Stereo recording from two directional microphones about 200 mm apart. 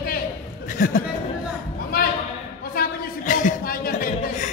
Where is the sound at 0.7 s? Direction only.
40° left (ahead or behind).